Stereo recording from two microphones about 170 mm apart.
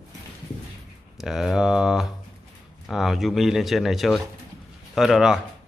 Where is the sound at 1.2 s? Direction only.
Centre (ahead or behind).